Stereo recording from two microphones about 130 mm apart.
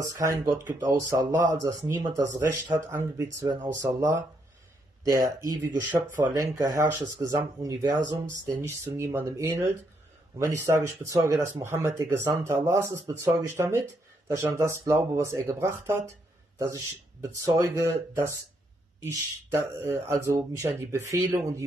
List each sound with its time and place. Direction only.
0.0 s speech: 25° right (ahead or behind)
19.0 s speech: 20° right (ahead or behind)